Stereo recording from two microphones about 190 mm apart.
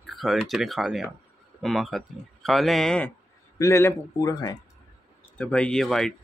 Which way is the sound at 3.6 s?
15° left (ahead or behind).